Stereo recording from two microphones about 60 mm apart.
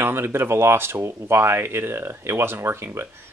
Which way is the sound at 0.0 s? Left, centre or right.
Right.